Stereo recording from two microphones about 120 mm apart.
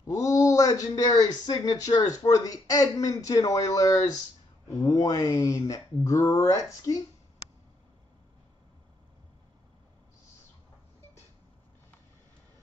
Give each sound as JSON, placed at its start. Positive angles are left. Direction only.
{"t": 0.0, "sound": "a man's voice", "side_deg": 30}